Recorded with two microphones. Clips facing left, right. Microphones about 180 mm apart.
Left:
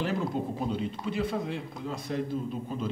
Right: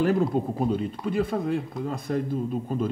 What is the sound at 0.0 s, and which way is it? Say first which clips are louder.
A man's voice: right 7 dB; 50° right (ahead or behind).